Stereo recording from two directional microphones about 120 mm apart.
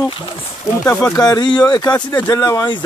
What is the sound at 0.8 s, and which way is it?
Speech, 15° left (ahead or behind).